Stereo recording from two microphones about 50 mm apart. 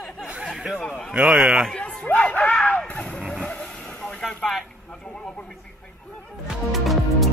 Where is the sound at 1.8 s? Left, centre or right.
Left.